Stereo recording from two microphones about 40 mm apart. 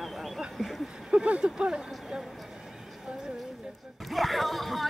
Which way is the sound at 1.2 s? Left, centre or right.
Right.